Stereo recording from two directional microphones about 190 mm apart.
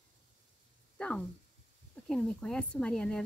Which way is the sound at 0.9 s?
5° left (ahead or behind).